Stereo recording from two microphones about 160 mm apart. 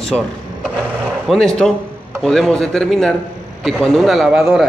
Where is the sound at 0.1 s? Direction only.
5° right (ahead or behind).